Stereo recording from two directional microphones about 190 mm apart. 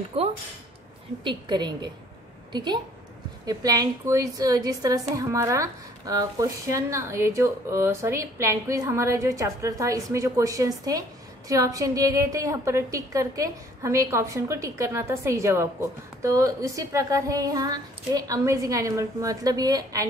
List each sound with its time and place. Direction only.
1.2 s a woman's voice: 25° right (ahead or behind)